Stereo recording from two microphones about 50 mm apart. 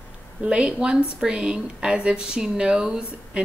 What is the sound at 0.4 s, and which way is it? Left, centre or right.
A woman's voice, centre.